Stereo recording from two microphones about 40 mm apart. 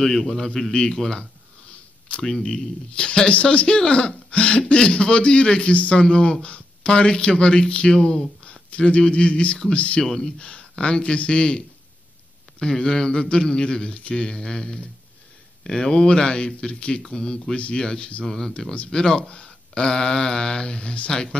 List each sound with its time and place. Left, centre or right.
0.0 s speech: centre
2.4 s speech: left
8.2 s speech: left
10.0 s speech: centre
10.4 s speech: left
17.6 s speech: left
18.2 s speech: centre
18.9 s speech: centre